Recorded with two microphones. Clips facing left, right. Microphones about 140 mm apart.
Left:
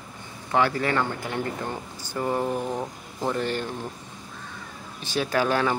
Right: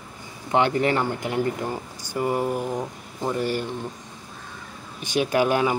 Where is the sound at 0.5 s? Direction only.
20° right (ahead or behind).